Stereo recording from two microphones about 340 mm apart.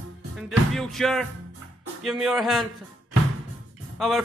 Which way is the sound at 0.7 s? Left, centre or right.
Centre.